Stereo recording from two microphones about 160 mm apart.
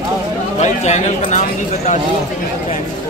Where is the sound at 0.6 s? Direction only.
45° left (ahead or behind).